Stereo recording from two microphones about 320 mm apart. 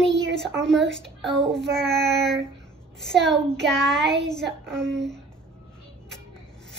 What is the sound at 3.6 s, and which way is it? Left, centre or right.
Child singing, centre.